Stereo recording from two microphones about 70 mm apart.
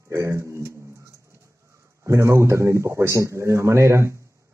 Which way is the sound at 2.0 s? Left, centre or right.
Right.